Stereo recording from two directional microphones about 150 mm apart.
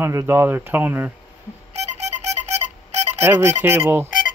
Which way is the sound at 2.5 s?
45° right (ahead or behind).